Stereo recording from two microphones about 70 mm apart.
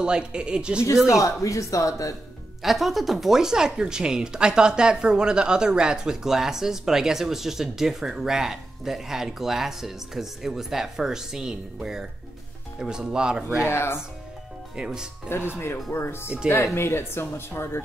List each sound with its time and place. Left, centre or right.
0.0 s speech: centre
1.1 s speech: left
2.6 s speech: centre
13.7 s speech: left
14.8 s speech: centre
15.2 s speech: left